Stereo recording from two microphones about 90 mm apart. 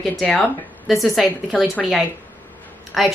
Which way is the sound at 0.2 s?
15° left (ahead or behind).